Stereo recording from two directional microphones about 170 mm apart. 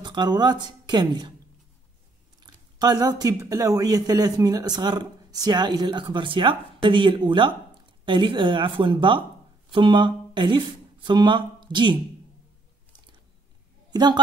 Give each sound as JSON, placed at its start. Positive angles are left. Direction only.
{"t": 0.0, "sound": "a woman's voice", "side_deg": -25}
{"t": 2.4, "sound": "speech", "side_deg": -25}
{"t": 13.9, "sound": "speech", "side_deg": -25}